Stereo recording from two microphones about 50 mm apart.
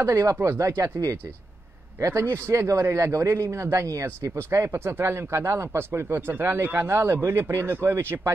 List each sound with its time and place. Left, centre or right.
0.1 s speech: right
2.0 s speech: right
3.3 s speech: right
3.5 s speech: right